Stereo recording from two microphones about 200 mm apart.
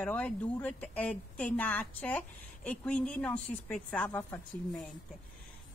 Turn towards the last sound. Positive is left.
turn(degrees=5)  # may be behind; listen again after turning